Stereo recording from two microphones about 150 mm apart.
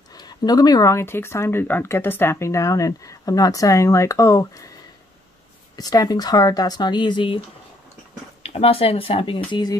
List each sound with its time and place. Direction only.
0.1 s speech: 25° left (ahead or behind)
5.8 s speech: 25° left (ahead or behind)
8.4 s speech: 40° left (ahead or behind)